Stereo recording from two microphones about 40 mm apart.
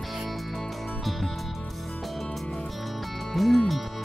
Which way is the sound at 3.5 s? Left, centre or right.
Centre.